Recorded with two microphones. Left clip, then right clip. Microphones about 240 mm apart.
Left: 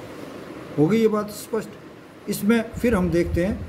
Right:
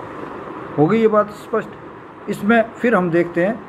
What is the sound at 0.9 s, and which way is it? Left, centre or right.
Speech, left.